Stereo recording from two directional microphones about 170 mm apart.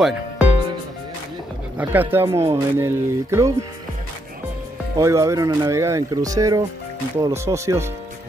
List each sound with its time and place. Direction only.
1.8 s speech: 10° right (ahead or behind)
4.9 s speech: 15° right (ahead or behind)